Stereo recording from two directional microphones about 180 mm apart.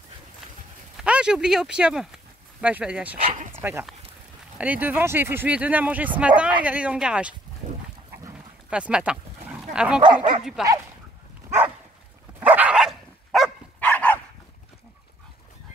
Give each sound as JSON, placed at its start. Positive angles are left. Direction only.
{"t": 0.9, "sound": "speech", "side_deg": -5}
{"t": 8.6, "sound": "dog", "side_deg": -5}
{"t": 10.1, "sound": "speech", "side_deg": -45}
{"t": 10.4, "sound": "speech", "side_deg": 0}
{"t": 12.4, "sound": "dog", "side_deg": -10}